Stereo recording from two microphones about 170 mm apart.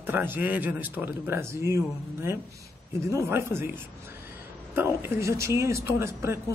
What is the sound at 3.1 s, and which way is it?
Speech, 15° right (ahead or behind).